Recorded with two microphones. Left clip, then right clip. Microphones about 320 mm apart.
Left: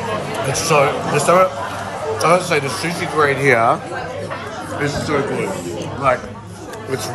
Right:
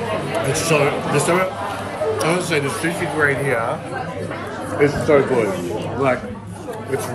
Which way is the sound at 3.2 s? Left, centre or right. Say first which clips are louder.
Left 5 dB; left.